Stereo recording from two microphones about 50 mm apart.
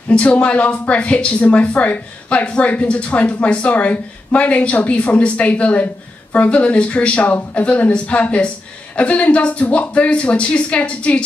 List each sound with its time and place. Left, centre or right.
0.1 s speech: left